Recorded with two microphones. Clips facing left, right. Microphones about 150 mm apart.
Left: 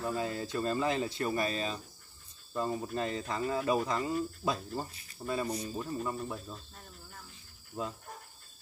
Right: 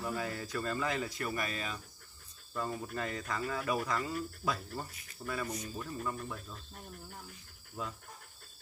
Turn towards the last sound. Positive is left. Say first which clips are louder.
# left 4 dB
turn(degrees=25)  # may be behind; listen again after turning